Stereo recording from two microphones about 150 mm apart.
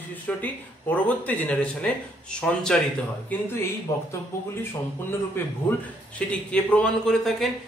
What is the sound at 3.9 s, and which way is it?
Speech, 25° left (ahead or behind).